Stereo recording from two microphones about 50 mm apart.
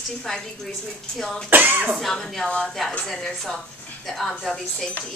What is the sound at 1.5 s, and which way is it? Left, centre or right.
Speech, right.